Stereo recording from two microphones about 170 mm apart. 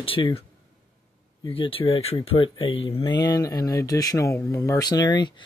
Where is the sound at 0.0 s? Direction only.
35° left (ahead or behind).